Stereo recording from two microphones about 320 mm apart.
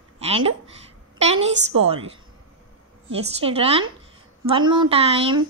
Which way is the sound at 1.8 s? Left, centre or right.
Centre.